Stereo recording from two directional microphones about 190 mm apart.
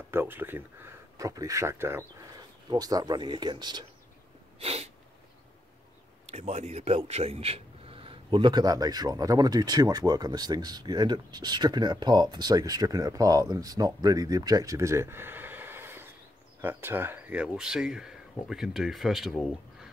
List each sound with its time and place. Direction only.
0.1 s a man's voice: 10° right (ahead or behind)
4.6 s sneeze: 30° right (ahead or behind)
6.2 s a man's voice: 35° right (ahead or behind); by 19.9 s centre (ahead or behind)